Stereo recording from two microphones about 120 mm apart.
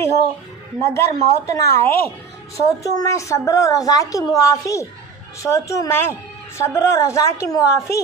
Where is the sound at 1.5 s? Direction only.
20° left (ahead or behind).